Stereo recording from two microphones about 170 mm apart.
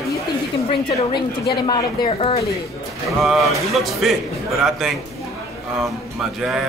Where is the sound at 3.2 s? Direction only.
Centre (ahead or behind).